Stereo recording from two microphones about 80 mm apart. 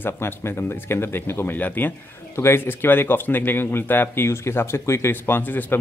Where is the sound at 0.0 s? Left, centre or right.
Left.